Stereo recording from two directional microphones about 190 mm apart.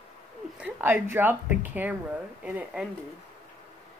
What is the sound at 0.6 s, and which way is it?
Speech, 10° right (ahead or behind).